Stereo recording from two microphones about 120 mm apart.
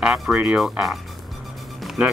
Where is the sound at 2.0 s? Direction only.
10° right (ahead or behind).